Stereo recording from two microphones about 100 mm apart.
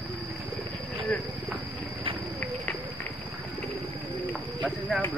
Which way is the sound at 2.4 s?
15° left (ahead or behind).